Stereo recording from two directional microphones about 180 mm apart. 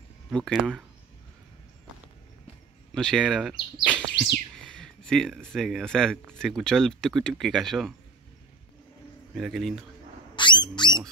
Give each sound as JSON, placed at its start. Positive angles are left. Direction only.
{"t": 0.3, "sound": "speech", "side_deg": 0}
{"t": 2.9, "sound": "speech", "side_deg": 5}
{"t": 9.3, "sound": "speech", "side_deg": 0}
{"t": 10.3, "sound": "a sound", "side_deg": 25}